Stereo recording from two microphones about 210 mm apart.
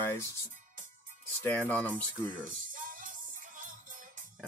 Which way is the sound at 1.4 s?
10° left (ahead or behind).